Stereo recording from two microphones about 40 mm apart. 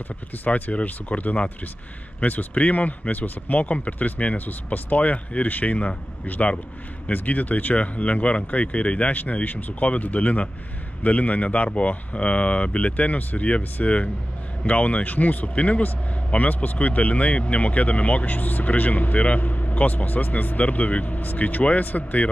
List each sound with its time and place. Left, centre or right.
0.5 s speech: left
3.6 s speech: left